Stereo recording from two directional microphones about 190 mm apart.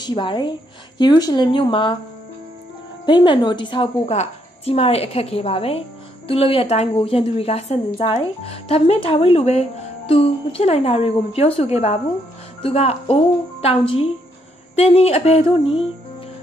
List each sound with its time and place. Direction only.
0.0 s a woman's voice: 25° left (ahead or behind)
3.1 s a woman's voice: 25° left (ahead or behind)
14.8 s a woman's voice: 35° left (ahead or behind)